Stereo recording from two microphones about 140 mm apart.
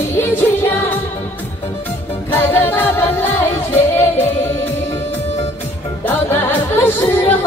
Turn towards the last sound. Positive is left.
turn(degrees=15)  # may be behind; listen again after turning